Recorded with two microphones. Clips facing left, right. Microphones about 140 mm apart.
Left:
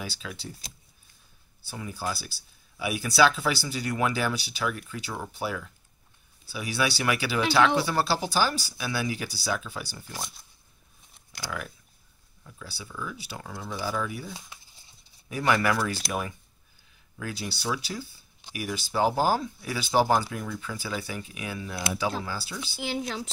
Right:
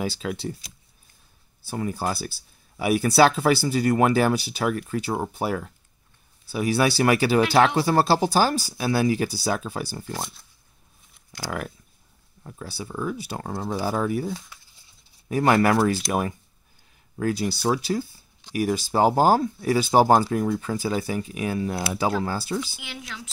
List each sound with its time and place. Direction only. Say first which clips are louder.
1.7 s speech: right 7 dB; 50° right (ahead or behind)
11.3 s speech: right 5 dB; 40° right (ahead or behind)
14.5 s a sound: even; 20° left (ahead or behind)
15.2 s speech: right 6 dB; 40° right (ahead or behind)
22.8 s speech: left 8 dB; 35° left (ahead or behind)